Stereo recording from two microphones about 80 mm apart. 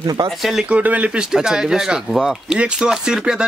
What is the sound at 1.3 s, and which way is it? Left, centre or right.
Speech, centre.